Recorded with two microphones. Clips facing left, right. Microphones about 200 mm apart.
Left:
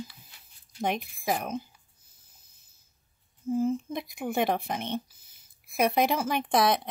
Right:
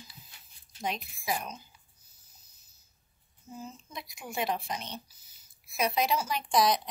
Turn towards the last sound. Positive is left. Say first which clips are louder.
# left 2 dB
turn(degrees=55)  # may be behind; listen again after turning